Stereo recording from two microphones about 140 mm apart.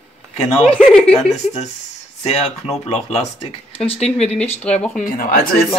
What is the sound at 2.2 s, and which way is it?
Speech, 50° left (ahead or behind).